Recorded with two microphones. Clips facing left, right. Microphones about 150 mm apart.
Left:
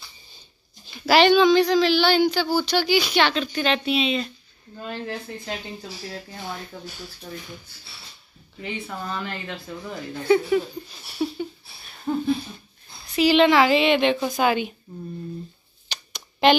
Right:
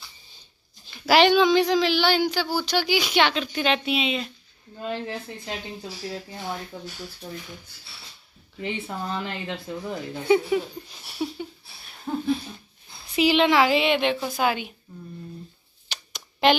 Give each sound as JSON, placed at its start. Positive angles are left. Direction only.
{"t": 1.0, "sound": "speech", "side_deg": -10}
{"t": 4.8, "sound": "speech", "side_deg": -20}
{"t": 8.6, "sound": "speech", "side_deg": -20}
{"t": 12.1, "sound": "a sound", "side_deg": -5}
{"t": 13.1, "sound": "a woman's voice", "side_deg": -10}
{"t": 15.9, "sound": "a sound", "side_deg": -5}